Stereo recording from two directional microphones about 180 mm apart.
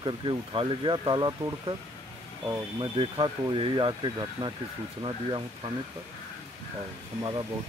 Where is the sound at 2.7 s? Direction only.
25° right (ahead or behind).